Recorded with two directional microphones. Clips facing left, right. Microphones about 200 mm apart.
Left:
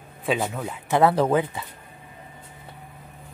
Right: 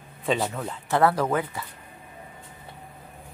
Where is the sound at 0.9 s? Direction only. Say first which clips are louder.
Left 3 dB; 20° left (ahead or behind).